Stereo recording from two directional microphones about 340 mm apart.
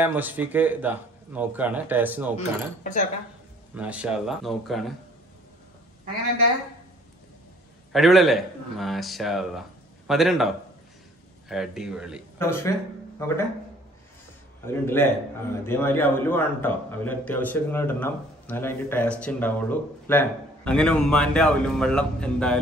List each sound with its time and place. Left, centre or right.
0.0 s a man's voice: centre
2.3 s speech: left
3.7 s a man's voice: centre
7.9 s a man's voice: centre
14.7 s a man's voice: centre